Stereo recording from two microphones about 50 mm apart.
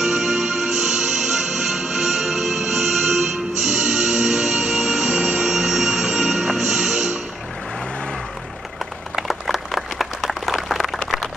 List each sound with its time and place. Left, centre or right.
0.0 s music: centre
6.4 s music: centre
9.1 s a sound: centre